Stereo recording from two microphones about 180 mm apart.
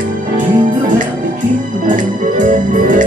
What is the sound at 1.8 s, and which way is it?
Organ, 45° right (ahead or behind).